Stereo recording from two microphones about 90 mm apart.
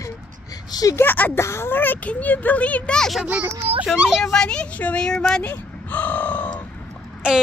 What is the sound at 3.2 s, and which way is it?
Speech, 15° right (ahead or behind).